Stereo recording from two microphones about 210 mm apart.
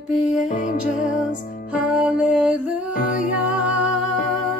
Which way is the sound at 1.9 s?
5° right (ahead or behind).